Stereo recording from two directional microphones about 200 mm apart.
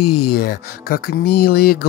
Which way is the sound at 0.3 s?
50° left (ahead or behind).